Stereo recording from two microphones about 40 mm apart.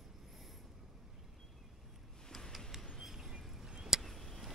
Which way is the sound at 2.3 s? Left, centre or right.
Centre.